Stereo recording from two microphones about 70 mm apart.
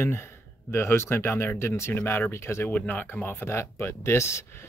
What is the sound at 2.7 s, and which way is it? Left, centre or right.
Speech, left.